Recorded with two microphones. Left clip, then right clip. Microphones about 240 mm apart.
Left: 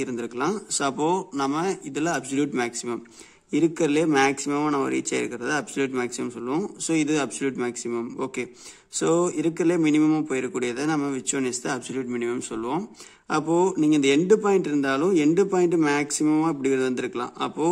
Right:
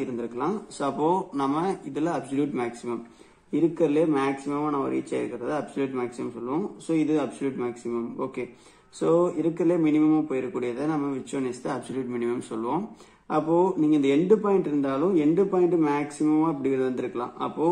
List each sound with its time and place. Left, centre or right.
0.0 s speech: left